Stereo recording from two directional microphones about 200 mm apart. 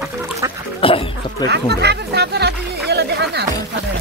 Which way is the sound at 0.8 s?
25° left (ahead or behind).